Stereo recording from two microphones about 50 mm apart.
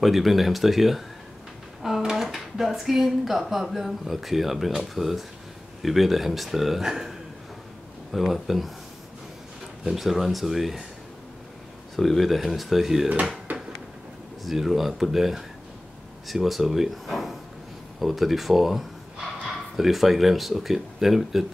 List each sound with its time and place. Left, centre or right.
0.0 s speech: centre
9.8 s speech: centre
12.0 s speech: centre
13.5 s a sound: right
14.4 s speech: centre